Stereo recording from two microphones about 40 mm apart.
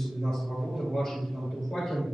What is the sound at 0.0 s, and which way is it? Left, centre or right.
A man's voice, centre.